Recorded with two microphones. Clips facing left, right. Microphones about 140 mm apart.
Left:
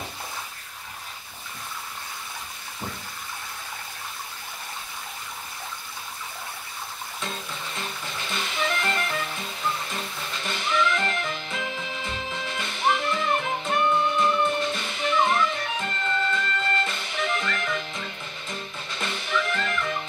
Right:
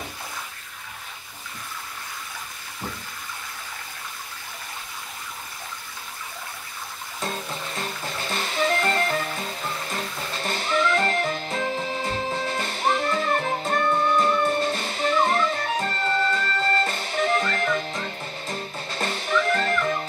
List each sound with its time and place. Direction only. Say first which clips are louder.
7.7 s music: right 3 dB; 40° right (ahead or behind)